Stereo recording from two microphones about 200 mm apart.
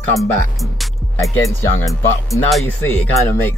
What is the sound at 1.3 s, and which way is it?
Speech, 15° left (ahead or behind).